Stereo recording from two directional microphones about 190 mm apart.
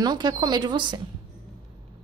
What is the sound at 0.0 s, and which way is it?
Speech, 20° right (ahead or behind).